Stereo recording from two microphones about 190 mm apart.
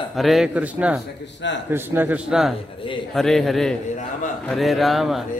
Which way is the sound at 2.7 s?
25° left (ahead or behind).